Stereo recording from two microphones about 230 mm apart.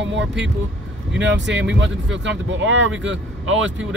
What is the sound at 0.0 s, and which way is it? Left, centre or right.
Speech, right.